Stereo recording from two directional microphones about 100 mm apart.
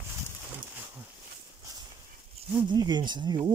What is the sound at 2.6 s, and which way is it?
Speech, 45° right (ahead or behind).